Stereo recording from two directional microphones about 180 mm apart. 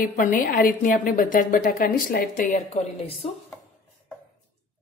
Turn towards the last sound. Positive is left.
turn(degrees=35)  # may be behind; listen again after turning